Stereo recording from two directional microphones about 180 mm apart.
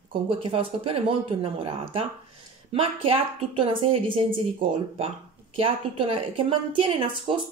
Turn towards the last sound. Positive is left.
turn(degrees=-30)  # may be behind; listen again after turning